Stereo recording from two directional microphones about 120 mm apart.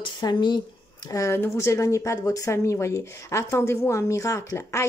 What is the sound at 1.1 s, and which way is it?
Speech, 25° left (ahead or behind).